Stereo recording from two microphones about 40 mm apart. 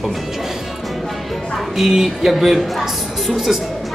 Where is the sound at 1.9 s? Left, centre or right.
Centre.